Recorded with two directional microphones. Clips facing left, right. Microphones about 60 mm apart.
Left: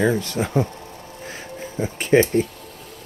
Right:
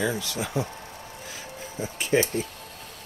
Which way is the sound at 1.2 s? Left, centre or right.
Left.